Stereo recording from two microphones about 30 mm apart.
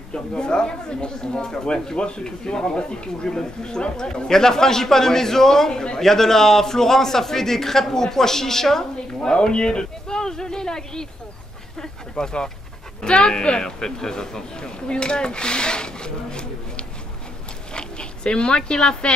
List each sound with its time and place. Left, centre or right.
0.1 s speech: left
2.0 s a man's voice: left
2.2 s a man's voice: left
9.3 s speech: left